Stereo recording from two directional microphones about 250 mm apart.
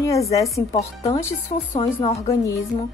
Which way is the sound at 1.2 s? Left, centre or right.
Centre.